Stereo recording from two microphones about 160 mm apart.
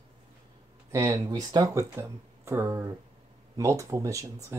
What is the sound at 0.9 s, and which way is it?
Speech, 20° right (ahead or behind).